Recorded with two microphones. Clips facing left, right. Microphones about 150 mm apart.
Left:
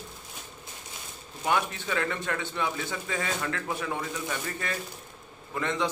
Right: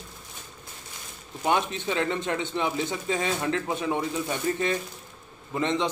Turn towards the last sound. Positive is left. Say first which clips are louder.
# right 4 dB
turn(degrees=-20)  # may be behind; listen again after turning